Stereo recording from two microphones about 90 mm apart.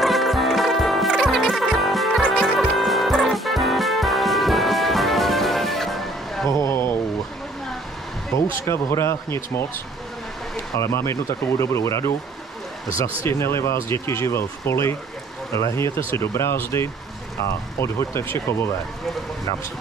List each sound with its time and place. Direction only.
0.0 s music: centre (ahead or behind)
6.6 s vehicle: 30° left (ahead or behind)
8.3 s a sound: 35° left (ahead or behind)
8.6 s speech: 30° left (ahead or behind)
10.8 s speech: 30° left (ahead or behind)
13.3 s speech: 30° left (ahead or behind)